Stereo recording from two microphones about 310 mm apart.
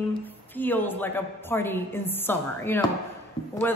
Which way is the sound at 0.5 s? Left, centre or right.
Centre.